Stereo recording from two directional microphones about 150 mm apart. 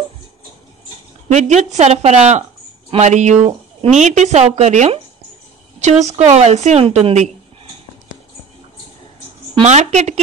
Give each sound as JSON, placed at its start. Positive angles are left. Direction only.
{"t": 1.3, "sound": "a woman's voice", "side_deg": -50}
{"t": 9.7, "sound": "a woman's voice", "side_deg": -50}